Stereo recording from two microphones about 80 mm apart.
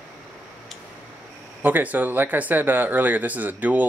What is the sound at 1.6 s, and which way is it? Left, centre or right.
Speech, right.